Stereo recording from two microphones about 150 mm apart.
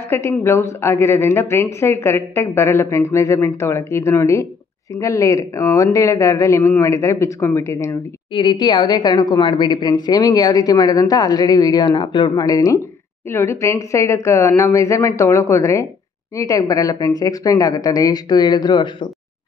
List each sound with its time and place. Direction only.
0.1 s a woman's voice: 20° left (ahead or behind)
8.3 s a woman's voice: 30° left (ahead or behind)